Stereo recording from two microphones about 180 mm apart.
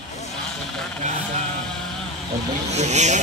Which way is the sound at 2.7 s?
40° right (ahead or behind).